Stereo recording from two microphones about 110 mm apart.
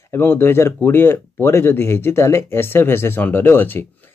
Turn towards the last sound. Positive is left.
turn(degrees=20)  # may be behind; listen again after turning